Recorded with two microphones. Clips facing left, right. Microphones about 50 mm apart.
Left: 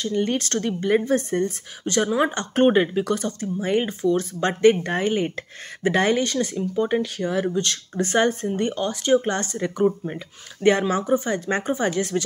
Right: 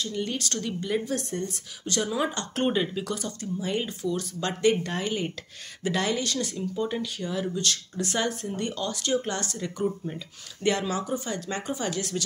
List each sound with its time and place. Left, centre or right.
0.0 s speech: left